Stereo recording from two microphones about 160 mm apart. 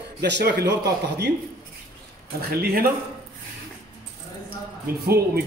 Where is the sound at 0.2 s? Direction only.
90° right.